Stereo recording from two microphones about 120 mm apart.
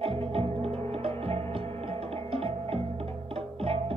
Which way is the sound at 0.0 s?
55° right (ahead or behind).